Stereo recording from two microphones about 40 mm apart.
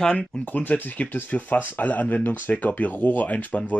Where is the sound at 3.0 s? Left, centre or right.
Left.